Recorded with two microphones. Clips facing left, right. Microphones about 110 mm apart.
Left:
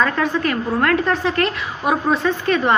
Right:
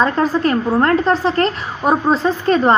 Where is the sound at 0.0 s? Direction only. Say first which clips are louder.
Right 3 dB; 30° right (ahead or behind).